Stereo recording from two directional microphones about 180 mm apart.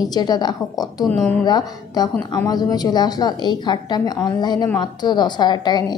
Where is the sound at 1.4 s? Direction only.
20° left (ahead or behind).